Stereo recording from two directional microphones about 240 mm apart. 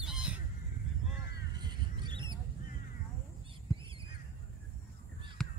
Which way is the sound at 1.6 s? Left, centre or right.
Centre.